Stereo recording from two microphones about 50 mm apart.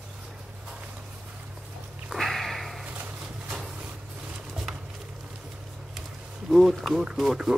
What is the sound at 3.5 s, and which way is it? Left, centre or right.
Vehicle, centre.